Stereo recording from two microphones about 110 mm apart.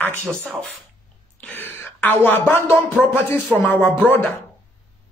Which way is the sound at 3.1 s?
20° left (ahead or behind).